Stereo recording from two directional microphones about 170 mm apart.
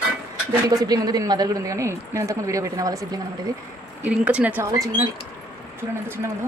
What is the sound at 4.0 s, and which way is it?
Speech, 10° right (ahead or behind).